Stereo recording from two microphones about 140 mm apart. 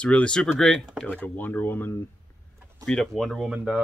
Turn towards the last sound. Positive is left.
turn(degrees=-5)  # may be behind; listen again after turning